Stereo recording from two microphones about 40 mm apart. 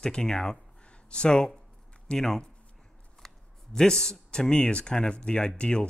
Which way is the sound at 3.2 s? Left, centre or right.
Centre.